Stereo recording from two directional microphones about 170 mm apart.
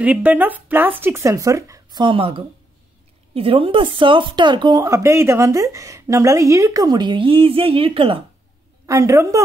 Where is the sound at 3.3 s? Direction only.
35° right (ahead or behind).